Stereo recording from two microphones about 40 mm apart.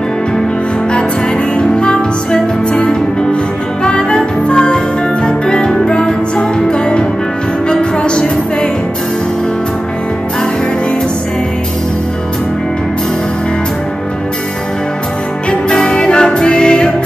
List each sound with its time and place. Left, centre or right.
1.6 s music: left
15.7 s music: left